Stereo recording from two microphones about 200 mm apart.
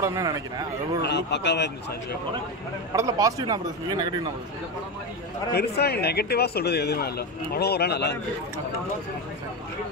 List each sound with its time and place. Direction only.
0.0 s speech: 15° right (ahead or behind)
1.0 s a man's voice: 60° left (ahead or behind)
2.9 s speech: 15° right (ahead or behind)
5.5 s speech: 55° left (ahead or behind)